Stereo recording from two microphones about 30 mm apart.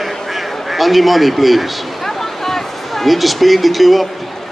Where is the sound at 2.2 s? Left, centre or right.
Centre.